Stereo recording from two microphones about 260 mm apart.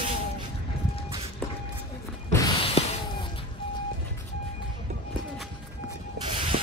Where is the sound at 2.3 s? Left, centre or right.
Centre.